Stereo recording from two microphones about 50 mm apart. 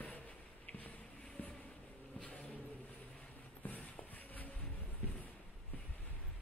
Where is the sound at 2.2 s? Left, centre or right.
Left.